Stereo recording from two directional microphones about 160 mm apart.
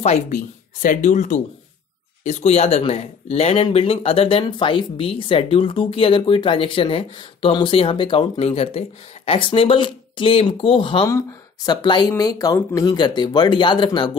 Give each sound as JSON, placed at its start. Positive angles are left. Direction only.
{"t": 0.0, "sound": "speech", "side_deg": 45}